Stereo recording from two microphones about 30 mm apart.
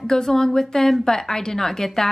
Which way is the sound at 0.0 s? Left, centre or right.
Centre.